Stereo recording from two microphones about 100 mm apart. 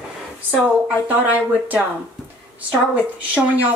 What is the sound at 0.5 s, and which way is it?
Speech, 15° right (ahead or behind).